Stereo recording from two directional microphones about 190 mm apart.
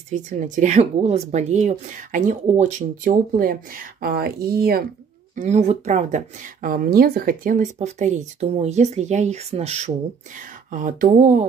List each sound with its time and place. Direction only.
0.1 s speech: 40° right (ahead or behind)
5.3 s speech: 40° right (ahead or behind)